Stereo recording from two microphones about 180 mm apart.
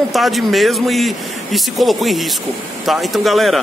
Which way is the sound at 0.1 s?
Centre (ahead or behind).